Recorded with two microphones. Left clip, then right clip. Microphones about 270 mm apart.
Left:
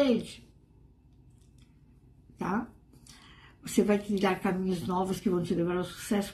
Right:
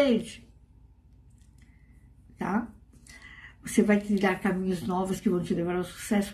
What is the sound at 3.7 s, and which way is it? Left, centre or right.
Speech, centre.